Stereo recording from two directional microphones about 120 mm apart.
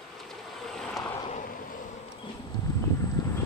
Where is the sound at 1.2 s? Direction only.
90° left.